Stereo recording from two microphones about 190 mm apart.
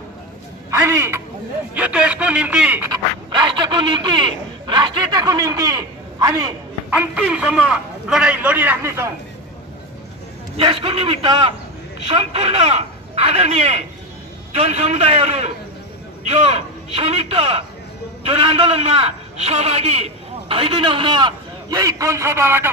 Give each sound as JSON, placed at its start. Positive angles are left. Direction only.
{"t": 0.7, "sound": "a man's voice", "side_deg": -15}
{"t": 3.3, "sound": "a man's voice", "side_deg": -25}
{"t": 6.9, "sound": "a man's voice", "side_deg": -5}
{"t": 10.6, "sound": "a man's voice", "side_deg": -30}